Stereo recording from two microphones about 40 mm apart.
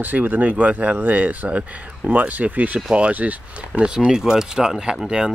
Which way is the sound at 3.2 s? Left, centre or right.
Right.